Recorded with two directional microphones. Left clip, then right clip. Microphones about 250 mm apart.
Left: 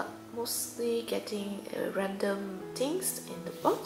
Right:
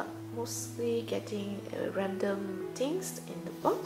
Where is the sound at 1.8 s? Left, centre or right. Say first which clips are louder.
Left 1 dB; centre.